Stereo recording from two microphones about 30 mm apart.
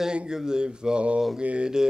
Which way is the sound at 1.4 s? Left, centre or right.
Right.